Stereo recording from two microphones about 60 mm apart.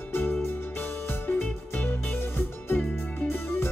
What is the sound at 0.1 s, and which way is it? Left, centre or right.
Music, left.